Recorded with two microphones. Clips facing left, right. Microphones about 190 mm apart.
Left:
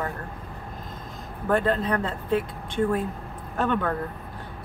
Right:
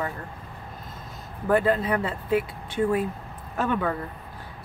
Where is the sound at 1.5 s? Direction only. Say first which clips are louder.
Right 1 dB; 5° right (ahead or behind).